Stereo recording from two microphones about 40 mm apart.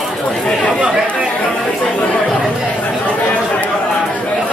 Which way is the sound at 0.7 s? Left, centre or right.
Right.